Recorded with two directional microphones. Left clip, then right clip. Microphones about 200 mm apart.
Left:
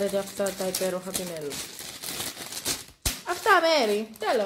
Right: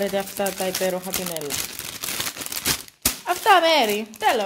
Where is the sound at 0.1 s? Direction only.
45° right (ahead or behind).